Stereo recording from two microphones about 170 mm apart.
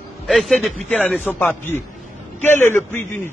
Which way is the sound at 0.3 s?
Centre (ahead or behind).